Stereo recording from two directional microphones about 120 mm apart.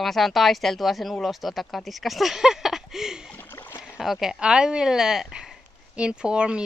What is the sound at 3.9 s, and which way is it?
Speech, centre (ahead or behind).